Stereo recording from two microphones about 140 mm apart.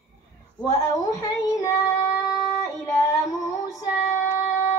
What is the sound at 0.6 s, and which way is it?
Child singing, 25° left (ahead or behind).